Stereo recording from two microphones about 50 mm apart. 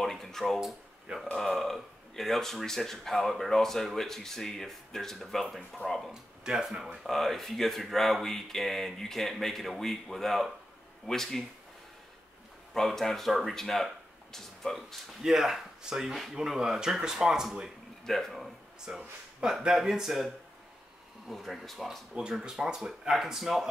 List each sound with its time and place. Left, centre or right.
0.0 s a sound: centre
1.3 s speech: centre
6.4 s speech: centre
7.0 s speech: centre
12.7 s speech: centre
15.2 s speech: centre
18.0 s speech: centre
18.9 s speech: right
19.7 s speech: centre
21.3 s speech: centre
22.1 s speech: centre